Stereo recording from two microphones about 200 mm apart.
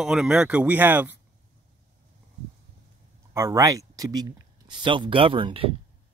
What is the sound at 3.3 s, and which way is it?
Speech, 15° right (ahead or behind).